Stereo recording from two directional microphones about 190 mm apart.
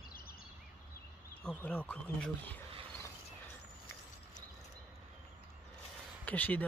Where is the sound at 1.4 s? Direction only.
5° left (ahead or behind).